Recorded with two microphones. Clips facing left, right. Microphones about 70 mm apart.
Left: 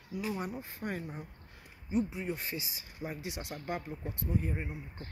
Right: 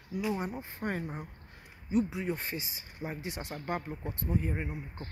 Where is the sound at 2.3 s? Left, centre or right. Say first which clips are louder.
Right 2 dB; right.